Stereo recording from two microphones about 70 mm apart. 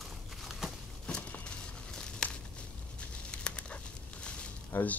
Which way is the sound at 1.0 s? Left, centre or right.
Centre.